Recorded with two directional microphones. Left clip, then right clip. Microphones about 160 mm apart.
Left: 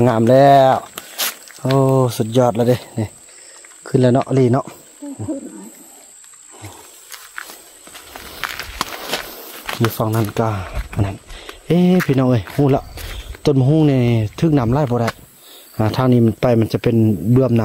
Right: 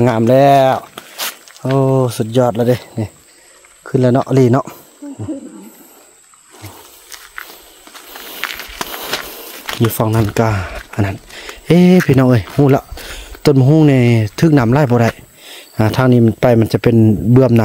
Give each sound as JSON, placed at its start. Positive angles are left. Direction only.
{"t": 0.0, "sound": "speech", "side_deg": -5}
{"t": 0.9, "sound": "a sound", "side_deg": 5}
{"t": 1.8, "sound": "speech", "side_deg": -10}
{"t": 4.2, "sound": "speech", "side_deg": -35}
{"t": 8.4, "sound": "walk", "side_deg": 5}
{"t": 9.8, "sound": "speech", "side_deg": -35}
{"t": 15.8, "sound": "speech", "side_deg": -25}